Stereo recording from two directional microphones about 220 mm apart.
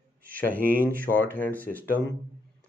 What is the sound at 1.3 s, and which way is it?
Speech, 10° left (ahead or behind).